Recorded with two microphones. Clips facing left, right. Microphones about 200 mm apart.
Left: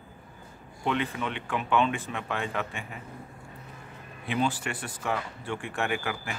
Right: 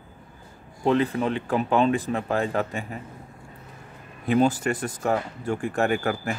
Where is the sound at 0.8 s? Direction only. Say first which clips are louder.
Right 8 dB; 35° right (ahead or behind).